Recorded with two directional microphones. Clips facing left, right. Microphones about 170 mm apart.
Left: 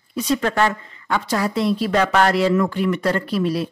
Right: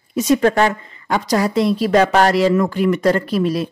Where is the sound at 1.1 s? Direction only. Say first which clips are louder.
Right 4 dB; 40° right (ahead or behind).